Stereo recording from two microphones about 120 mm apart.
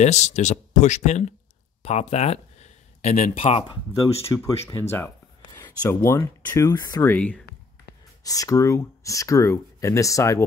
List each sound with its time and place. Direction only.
0.0 s speech: 70° left (ahead or behind)
1.8 s speech: 60° left (ahead or behind)
4.3 s speech: 25° left (ahead or behind)
5.6 s speech: 30° left (ahead or behind)
6.7 s speech: 35° left (ahead or behind)
7.0 s speech: 15° left (ahead or behind)
8.2 s speech: 30° left (ahead or behind)